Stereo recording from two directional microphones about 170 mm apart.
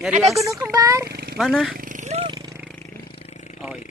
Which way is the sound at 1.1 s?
65° right (ahead or behind).